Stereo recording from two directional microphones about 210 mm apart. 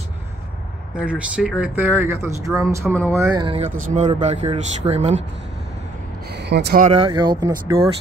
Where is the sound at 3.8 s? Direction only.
35° right (ahead or behind).